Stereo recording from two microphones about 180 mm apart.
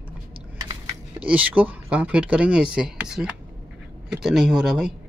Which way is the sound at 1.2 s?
10° right (ahead or behind).